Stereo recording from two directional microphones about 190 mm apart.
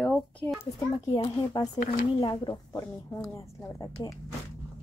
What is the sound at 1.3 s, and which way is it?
A child's voice, 20° left (ahead or behind).